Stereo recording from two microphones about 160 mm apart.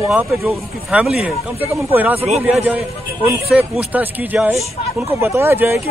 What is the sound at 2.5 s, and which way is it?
Speech, 10° right (ahead or behind).